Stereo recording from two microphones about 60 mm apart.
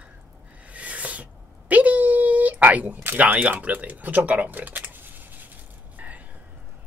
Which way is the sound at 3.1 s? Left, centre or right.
Right.